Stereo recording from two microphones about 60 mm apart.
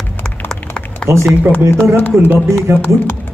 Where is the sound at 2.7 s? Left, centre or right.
Right.